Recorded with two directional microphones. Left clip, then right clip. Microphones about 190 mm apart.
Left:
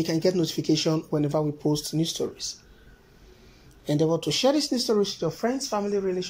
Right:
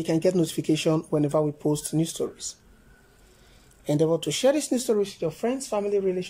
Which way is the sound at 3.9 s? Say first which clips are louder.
Right 1 dB; 15° right (ahead or behind).